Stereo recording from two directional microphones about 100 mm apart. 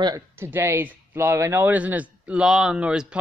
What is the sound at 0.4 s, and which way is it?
Speech, 25° right (ahead or behind).